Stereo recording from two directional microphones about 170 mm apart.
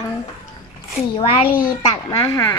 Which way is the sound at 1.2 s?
30° left (ahead or behind).